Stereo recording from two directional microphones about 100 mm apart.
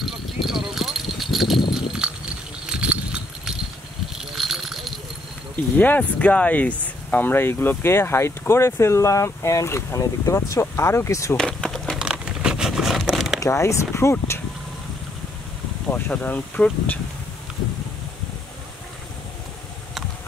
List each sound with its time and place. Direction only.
0.0 s a sound: centre (ahead or behind)
1.7 s horse: 5° right (ahead or behind)
2.6 s dog: 10° right (ahead or behind)
4.2 s a sound: centre (ahead or behind)
5.8 s speech: 15° left (ahead or behind)
11.3 s a sound: 5° left (ahead or behind)
12.0 s crumpling: 10° right (ahead or behind)
13.4 s speech: 30° left (ahead or behind)
15.9 s speech: 15° left (ahead or behind)